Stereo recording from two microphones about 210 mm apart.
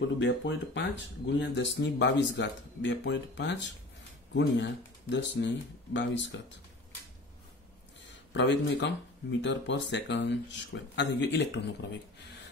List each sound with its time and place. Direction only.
0.2 s speech: 60° left (ahead or behind)
8.1 s speech: 55° left (ahead or behind)